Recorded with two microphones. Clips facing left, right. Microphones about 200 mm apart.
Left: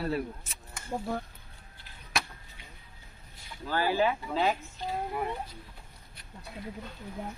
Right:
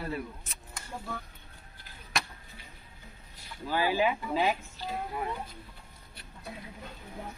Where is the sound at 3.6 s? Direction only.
15° right (ahead or behind).